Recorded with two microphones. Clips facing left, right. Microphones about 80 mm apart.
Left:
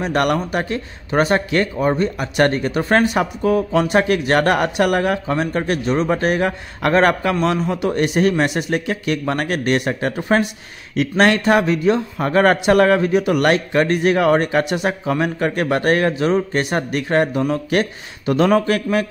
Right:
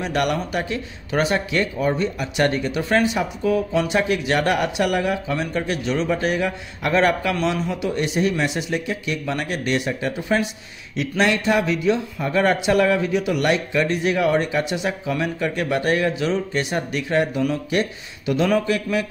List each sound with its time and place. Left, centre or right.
0.0 s speech: left
17.6 s speech: left